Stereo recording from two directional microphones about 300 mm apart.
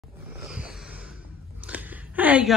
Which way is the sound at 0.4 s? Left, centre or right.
Centre.